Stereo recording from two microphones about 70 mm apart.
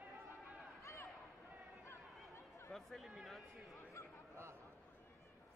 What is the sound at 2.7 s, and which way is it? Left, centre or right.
Speech, centre.